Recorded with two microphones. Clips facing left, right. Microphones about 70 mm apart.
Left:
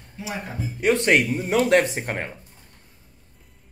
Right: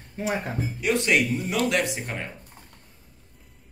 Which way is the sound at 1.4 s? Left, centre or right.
Left.